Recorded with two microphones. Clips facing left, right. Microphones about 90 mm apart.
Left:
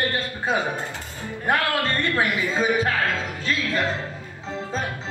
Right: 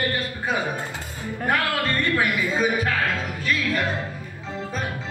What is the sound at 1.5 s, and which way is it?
Speech, 25° left (ahead or behind).